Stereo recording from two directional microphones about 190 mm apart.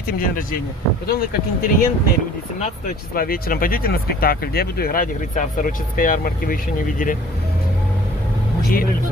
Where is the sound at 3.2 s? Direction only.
50° left (ahead or behind).